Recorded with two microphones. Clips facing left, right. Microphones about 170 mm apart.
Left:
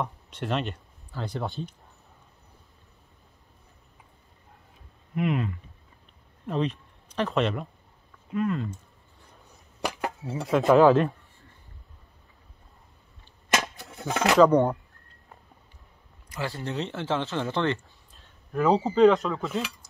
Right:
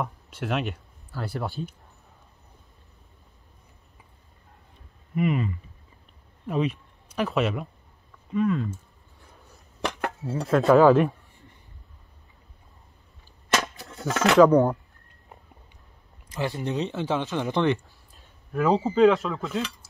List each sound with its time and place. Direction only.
0.0 s speech: 5° right (ahead or behind)
5.1 s speech: centre (ahead or behind)
9.4 s chop: centre (ahead or behind)
10.4 s speech: centre (ahead or behind)
13.9 s speech: 10° left (ahead or behind)
14.3 s speech: 5° right (ahead or behind)
16.3 s speech: 20° right (ahead or behind)
18.5 s speech: centre (ahead or behind)